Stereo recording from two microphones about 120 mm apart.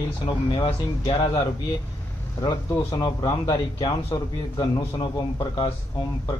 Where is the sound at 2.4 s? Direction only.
35° left (ahead or behind).